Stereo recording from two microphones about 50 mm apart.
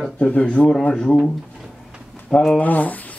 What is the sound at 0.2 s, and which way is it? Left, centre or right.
Speech, left.